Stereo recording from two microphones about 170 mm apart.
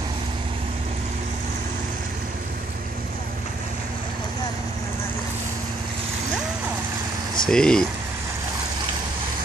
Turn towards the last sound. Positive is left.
turn(degrees=5)  # may be behind; listen again after turning